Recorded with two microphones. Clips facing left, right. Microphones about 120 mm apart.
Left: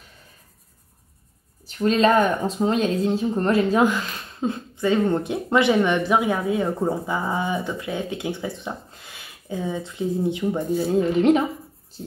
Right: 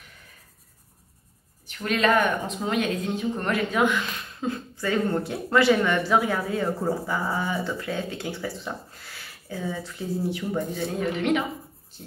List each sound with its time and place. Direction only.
1.7 s speech: 30° left (ahead or behind)
10.9 s a woman's voice: 30° left (ahead or behind)